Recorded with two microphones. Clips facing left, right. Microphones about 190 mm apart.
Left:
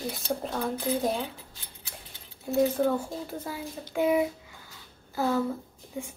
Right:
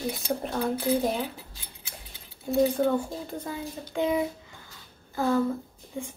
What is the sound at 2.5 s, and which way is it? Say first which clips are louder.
A woman's voice: right 1 dB; 5° left (ahead or behind).